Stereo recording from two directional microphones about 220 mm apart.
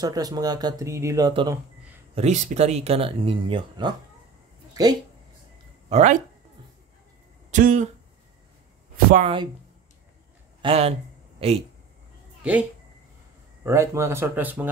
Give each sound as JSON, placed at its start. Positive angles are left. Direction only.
{"t": 0.0, "sound": "speech", "side_deg": -15}
{"t": 2.1, "sound": "speech", "side_deg": -30}
{"t": 5.9, "sound": "speech", "side_deg": -30}
{"t": 7.5, "sound": "speech", "side_deg": -35}
{"t": 9.1, "sound": "speech", "side_deg": -25}
{"t": 10.6, "sound": "a sound", "side_deg": -25}
{"t": 13.7, "sound": "speech", "side_deg": -10}